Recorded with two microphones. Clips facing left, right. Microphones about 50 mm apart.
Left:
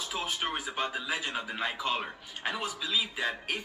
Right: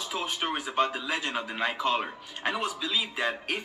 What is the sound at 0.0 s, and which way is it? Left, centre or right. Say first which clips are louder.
A man's voice: right 2 dB; centre.